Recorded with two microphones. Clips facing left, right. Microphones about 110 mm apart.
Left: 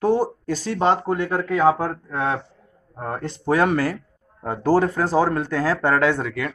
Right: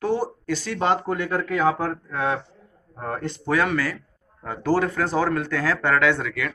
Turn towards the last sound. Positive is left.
turn(degrees=40)  # may be behind; listen again after turning